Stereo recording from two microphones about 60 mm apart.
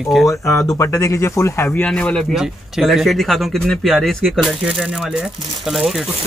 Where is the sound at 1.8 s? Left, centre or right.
Centre.